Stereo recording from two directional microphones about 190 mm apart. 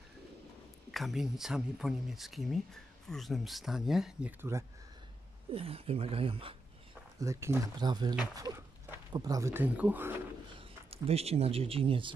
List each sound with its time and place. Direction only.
0.9 s speech: centre (ahead or behind)
5.5 s speech: 30° right (ahead or behind)
7.2 s speech: 15° right (ahead or behind)
10.9 s speech: 30° right (ahead or behind)